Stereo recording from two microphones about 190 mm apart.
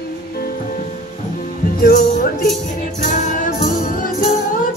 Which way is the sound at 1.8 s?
50° left (ahead or behind).